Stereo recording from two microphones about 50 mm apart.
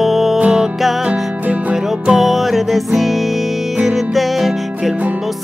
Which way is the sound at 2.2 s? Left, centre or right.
Centre.